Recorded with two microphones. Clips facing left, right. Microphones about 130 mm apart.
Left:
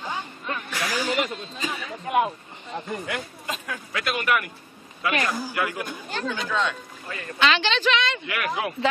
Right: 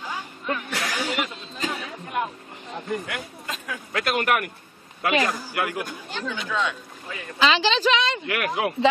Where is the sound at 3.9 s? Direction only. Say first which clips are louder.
Right 2 dB; 55° right (ahead or behind).